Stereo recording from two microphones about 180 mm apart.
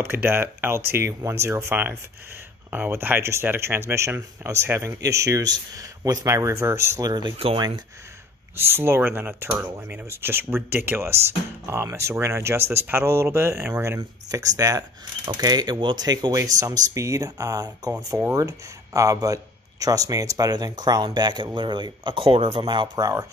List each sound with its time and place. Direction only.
0.0 s speech: 10° right (ahead or behind)
8.5 s speech: 15° right (ahead or behind)